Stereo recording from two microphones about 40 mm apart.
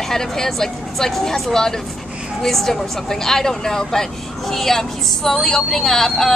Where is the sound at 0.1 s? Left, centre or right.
Centre.